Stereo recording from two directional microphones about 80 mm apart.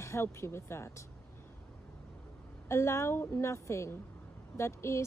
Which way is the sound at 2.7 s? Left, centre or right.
Left.